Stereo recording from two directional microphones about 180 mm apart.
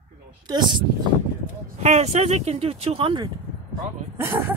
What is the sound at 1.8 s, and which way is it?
Speech, 40° right (ahead or behind).